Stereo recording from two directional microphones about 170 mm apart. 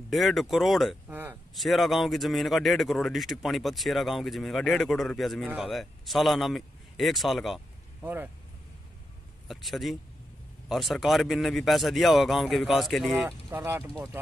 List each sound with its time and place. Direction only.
0.1 s a man's voice: centre (ahead or behind)
1.1 s speech: 10° right (ahead or behind)
1.5 s a man's voice: centre (ahead or behind)
9.5 s a man's voice: centre (ahead or behind)
13.5 s speech: 10° right (ahead or behind)